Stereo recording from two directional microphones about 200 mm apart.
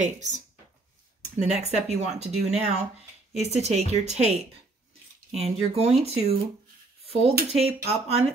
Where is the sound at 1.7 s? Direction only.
35° right (ahead or behind).